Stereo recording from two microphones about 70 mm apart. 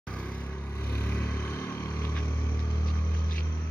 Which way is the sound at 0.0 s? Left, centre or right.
Centre.